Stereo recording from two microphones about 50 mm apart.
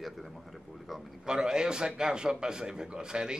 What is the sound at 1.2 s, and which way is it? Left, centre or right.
A man's voice, centre.